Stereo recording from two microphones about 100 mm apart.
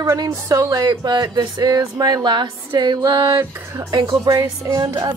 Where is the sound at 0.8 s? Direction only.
45° right (ahead or behind).